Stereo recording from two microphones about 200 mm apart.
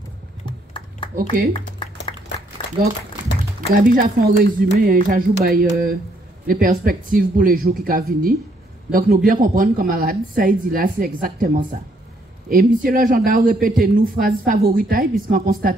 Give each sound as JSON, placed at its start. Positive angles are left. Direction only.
{"t": 0.5, "sound": "a sound", "side_deg": 25}
{"t": 1.1, "sound": "speech", "side_deg": -50}
{"t": 3.7, "sound": "speech", "side_deg": -45}